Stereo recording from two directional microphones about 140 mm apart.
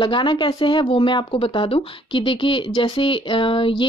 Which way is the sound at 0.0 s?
35° left (ahead or behind).